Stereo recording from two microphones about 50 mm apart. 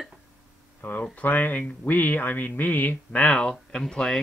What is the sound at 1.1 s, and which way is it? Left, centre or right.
Speech, left.